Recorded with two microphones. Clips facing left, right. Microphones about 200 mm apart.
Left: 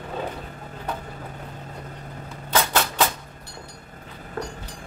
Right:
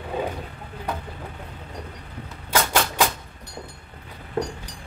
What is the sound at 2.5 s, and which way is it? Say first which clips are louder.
Typewriter: even; 10° right (ahead or behind).